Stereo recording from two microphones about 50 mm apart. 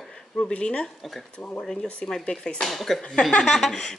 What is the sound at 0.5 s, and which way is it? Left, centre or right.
Speech, left.